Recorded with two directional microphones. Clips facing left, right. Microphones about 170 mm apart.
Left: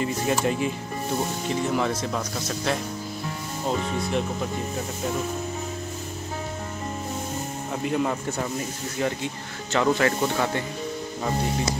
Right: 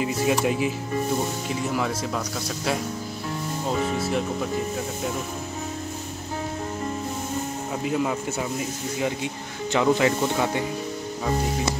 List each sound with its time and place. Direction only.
0.0 s speech: 5° right (ahead or behind)
7.8 s speech: centre (ahead or behind)